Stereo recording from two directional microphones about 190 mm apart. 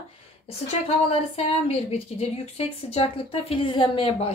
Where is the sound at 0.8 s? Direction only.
30° left (ahead or behind).